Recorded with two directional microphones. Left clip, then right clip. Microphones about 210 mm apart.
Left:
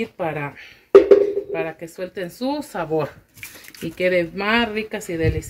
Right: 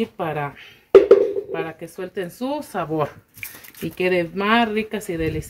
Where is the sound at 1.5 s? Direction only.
50° right (ahead or behind).